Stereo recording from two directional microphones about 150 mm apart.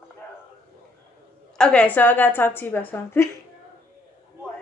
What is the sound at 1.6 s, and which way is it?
A woman's voice, 5° left (ahead or behind).